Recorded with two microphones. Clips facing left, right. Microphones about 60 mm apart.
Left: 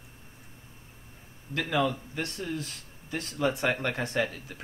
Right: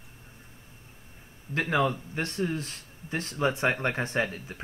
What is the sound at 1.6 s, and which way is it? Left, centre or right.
Speech, right.